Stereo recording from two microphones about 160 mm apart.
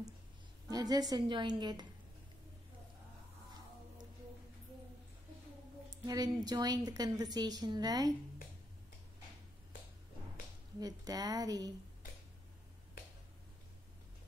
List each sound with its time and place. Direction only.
0.7 s a woman's voice: 25° right (ahead or behind)
6.0 s a woman's voice: 25° right (ahead or behind)
10.8 s a woman's voice: 25° right (ahead or behind)